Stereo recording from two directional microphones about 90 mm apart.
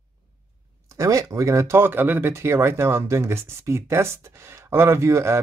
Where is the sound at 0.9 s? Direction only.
35° right (ahead or behind).